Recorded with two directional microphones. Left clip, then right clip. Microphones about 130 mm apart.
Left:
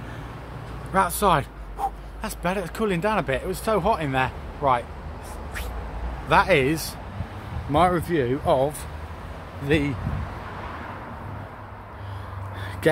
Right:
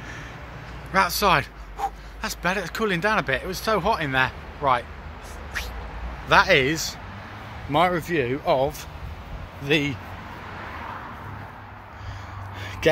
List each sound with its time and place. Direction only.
0.9 s speech: 10° right (ahead or behind)
6.2 s speech: 5° right (ahead or behind)
6.7 s speech: 20° left (ahead or behind)